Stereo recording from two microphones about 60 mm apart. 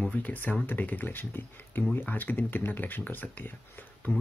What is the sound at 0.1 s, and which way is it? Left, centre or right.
Speech, left.